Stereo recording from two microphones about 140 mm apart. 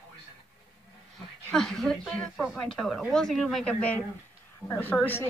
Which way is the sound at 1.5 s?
5° left (ahead or behind).